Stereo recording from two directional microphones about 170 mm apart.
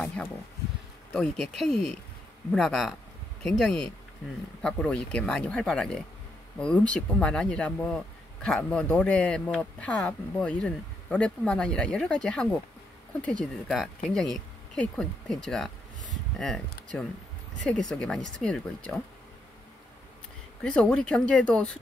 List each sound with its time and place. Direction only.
0.0 s a sound: 5° left (ahead or behind)
1.1 s speech: 5° left (ahead or behind)
20.6 s speech: 5° left (ahead or behind)